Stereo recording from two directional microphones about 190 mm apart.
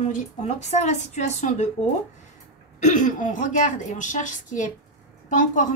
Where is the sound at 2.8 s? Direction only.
40° left (ahead or behind).